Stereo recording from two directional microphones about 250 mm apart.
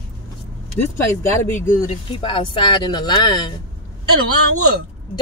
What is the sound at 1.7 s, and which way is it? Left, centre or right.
Speech, left.